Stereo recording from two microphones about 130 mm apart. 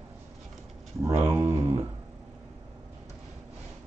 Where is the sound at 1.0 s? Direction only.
20° right (ahead or behind).